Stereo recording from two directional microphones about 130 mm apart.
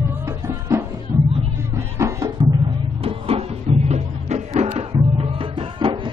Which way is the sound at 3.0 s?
50° right (ahead or behind).